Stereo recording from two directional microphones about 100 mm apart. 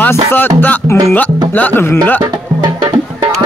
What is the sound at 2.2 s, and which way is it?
Music, 40° right (ahead or behind).